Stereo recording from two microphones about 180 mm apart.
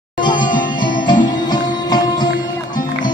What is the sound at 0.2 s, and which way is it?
Music, 25° left (ahead or behind).